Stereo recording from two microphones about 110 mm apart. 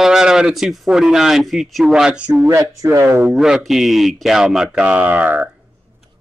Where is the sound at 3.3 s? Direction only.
5° right (ahead or behind).